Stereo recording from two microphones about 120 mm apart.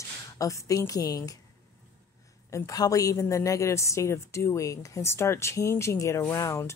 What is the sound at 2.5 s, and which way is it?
Speech, 25° left (ahead or behind).